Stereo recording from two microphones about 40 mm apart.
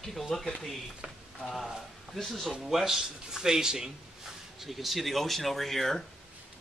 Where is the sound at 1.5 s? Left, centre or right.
Centre.